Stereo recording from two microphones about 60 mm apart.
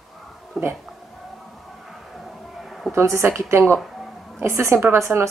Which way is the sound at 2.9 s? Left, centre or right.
Right.